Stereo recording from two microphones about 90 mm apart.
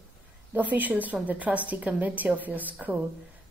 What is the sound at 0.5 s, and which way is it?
A woman's voice, 20° right (ahead or behind).